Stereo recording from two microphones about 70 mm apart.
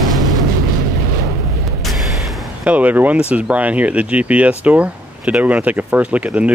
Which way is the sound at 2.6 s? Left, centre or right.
Right.